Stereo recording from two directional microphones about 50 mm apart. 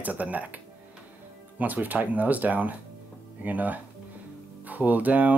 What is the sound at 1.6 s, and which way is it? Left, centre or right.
Speech, right.